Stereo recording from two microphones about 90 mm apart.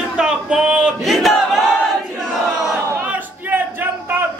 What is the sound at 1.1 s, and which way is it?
Battle cry, centre (ahead or behind).